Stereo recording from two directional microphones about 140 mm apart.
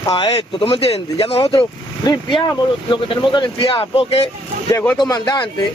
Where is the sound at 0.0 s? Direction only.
30° left (ahead or behind).